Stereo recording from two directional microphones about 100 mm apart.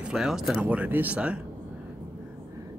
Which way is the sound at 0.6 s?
15° right (ahead or behind).